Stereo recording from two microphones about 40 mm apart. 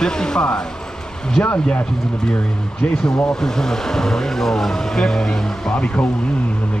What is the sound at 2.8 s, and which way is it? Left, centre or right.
Speech, left.